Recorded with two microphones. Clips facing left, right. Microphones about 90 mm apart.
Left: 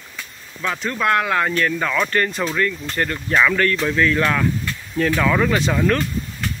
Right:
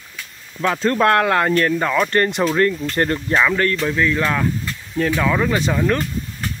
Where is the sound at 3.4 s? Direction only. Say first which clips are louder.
Left 2 dB; 20° right (ahead or behind).